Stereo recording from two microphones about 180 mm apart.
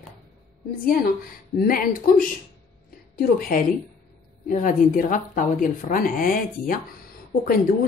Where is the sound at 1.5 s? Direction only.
55° left (ahead or behind).